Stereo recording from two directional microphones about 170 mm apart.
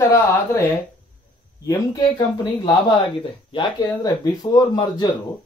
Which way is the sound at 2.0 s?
25° left (ahead or behind).